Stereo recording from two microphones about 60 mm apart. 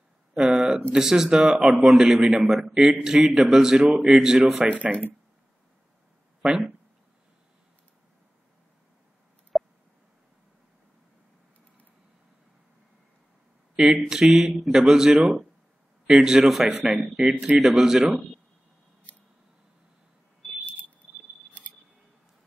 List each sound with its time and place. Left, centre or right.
0.3 s a sound: centre
0.9 s a man's voice: centre
4.6 s a man's voice: right
6.4 s speech: right
9.5 s a sound: centre
13.7 s a man's voice: centre
16.8 s a man's voice: right
17.6 s a man's voice: centre